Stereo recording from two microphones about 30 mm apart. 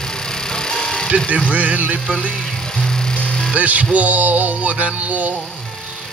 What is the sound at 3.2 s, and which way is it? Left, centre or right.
Music, left.